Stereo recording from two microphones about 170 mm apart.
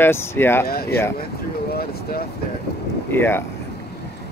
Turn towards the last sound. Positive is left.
turn(degrees=15)  # may be behind; listen again after turning